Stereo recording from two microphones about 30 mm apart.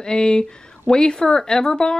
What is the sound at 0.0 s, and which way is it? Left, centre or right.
Speech, left.